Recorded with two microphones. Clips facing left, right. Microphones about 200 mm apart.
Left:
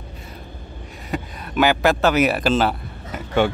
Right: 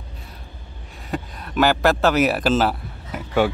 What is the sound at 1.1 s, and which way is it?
A man's voice, centre (ahead or behind).